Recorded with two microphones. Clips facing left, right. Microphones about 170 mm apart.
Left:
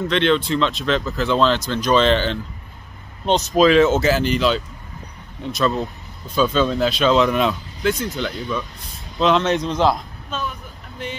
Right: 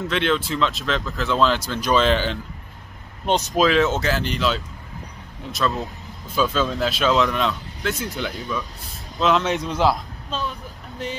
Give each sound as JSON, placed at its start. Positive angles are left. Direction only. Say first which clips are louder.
{"t": 0.1, "sound": "speech", "louder": "left 4 dB", "side_deg": -5}
{"t": 7.9, "sound": "speech", "louder": "left 3 dB", "side_deg": -10}
{"t": 10.3, "sound": "speech", "louder": "even", "side_deg": -35}